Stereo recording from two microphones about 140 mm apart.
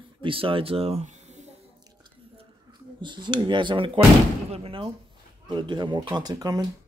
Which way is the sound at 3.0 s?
35° right (ahead or behind).